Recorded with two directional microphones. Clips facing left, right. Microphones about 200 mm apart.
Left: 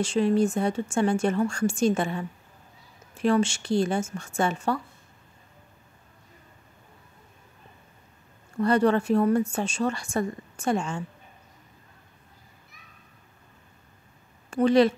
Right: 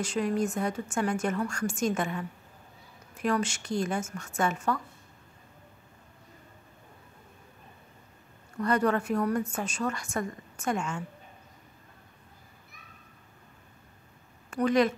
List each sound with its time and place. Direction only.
0.0 s speech: 30° left (ahead or behind)
8.5 s speech: 30° left (ahead or behind)
14.5 s speech: 30° left (ahead or behind)